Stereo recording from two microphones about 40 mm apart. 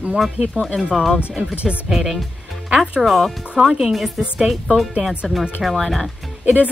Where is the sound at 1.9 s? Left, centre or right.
Centre.